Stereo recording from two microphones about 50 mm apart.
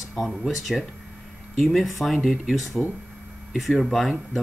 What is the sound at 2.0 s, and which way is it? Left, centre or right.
Speech, centre.